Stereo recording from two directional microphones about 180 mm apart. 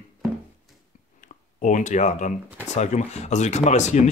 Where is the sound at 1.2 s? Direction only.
45° left (ahead or behind).